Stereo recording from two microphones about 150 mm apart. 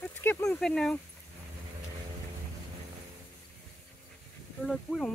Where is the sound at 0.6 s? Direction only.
5° left (ahead or behind).